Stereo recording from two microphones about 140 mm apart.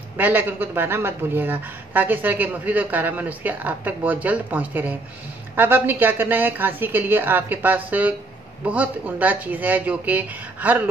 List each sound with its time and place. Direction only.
0.2 s speech: 15° right (ahead or behind)